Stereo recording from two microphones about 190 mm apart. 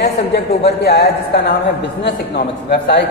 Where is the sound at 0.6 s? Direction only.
60° left (ahead or behind).